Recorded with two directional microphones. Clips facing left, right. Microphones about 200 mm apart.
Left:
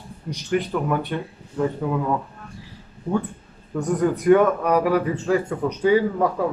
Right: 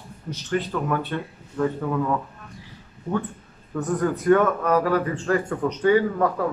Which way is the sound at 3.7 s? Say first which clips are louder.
Left 2 dB; 10° left (ahead or behind).